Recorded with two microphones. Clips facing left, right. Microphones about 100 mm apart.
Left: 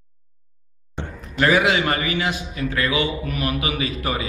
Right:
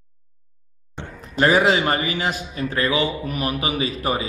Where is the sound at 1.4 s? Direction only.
35° right (ahead or behind).